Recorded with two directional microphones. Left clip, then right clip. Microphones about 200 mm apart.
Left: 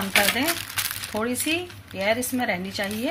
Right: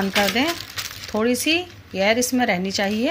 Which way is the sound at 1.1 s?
40° right (ahead or behind).